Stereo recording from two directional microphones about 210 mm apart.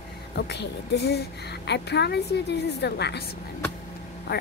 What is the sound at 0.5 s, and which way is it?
A woman's voice, 55° left (ahead or behind).